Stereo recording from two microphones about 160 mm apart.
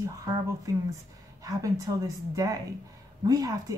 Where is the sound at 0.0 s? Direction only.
20° right (ahead or behind).